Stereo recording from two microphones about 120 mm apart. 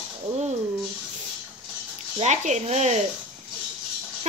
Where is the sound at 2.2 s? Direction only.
80° right.